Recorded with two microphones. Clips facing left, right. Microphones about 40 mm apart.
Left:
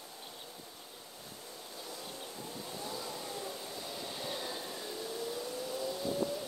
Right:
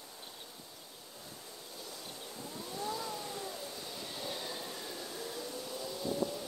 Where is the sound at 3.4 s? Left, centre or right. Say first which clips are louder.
Left 1 dB; centre.